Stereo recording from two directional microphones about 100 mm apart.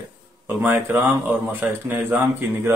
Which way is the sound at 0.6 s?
20° right (ahead or behind).